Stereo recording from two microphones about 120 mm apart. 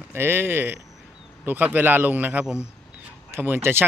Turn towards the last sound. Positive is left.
turn(degrees=-20)  # may be behind; listen again after turning